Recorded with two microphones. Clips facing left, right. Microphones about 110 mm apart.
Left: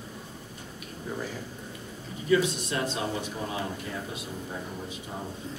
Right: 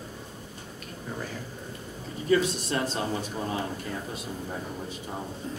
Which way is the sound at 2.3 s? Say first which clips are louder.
Even; 40° right (ahead or behind).